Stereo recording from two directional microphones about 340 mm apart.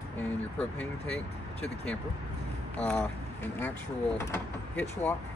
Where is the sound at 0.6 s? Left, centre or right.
Centre.